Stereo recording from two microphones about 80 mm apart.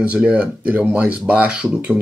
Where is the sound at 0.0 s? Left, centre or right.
Centre.